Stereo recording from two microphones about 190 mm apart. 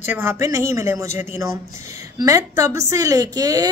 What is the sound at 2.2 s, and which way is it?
A woman's voice, 15° right (ahead or behind).